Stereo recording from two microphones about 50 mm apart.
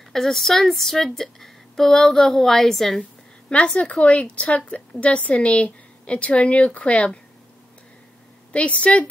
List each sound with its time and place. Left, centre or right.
0.1 s a woman's voice: centre
3.5 s a woman's voice: left
8.5 s a woman's voice: left